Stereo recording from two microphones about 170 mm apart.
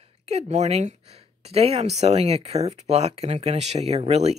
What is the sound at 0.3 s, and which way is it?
Speech, 40° right (ahead or behind).